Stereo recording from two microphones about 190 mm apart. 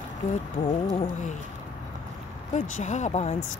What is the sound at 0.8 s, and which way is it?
Speech, 30° left (ahead or behind).